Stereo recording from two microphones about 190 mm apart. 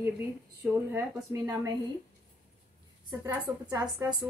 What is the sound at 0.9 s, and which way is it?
Speech, 15° right (ahead or behind).